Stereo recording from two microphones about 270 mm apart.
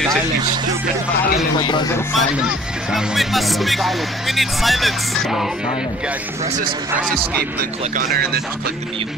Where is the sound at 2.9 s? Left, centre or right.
Centre.